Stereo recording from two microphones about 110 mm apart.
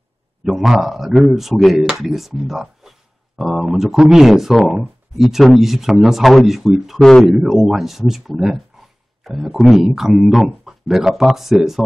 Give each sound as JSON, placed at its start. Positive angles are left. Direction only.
{"t": 0.4, "sound": "speech", "side_deg": -5}